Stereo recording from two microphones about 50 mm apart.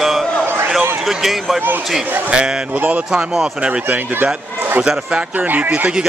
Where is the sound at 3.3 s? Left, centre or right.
Centre.